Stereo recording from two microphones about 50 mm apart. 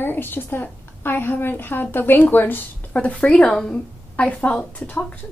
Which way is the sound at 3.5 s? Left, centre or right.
Centre.